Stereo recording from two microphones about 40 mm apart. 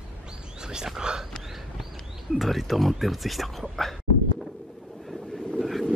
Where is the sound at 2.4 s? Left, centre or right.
Centre.